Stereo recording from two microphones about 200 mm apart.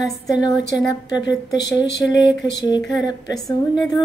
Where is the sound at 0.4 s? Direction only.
20° left (ahead or behind).